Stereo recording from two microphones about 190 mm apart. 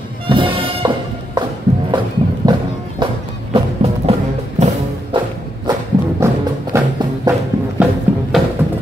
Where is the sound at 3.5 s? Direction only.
30° right (ahead or behind); by 7.3 s 15° right (ahead or behind).